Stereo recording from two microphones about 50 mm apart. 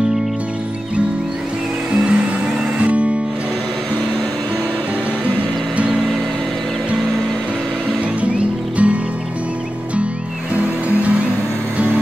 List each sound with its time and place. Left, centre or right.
1.9 s music: centre
8.2 s music: right
10.5 s music: right